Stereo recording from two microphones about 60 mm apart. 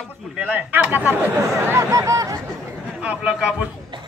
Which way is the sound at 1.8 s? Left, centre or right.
Right.